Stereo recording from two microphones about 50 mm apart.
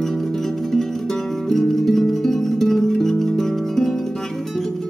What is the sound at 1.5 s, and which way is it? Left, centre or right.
Music, centre.